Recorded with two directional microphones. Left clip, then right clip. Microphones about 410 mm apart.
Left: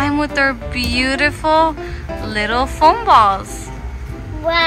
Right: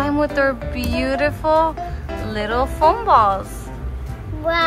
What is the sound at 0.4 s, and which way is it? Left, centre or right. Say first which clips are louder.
Speech: left 2 dB; centre.